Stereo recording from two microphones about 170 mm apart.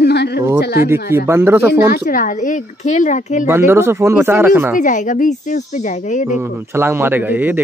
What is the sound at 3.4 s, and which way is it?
A man's voice, 15° right (ahead or behind).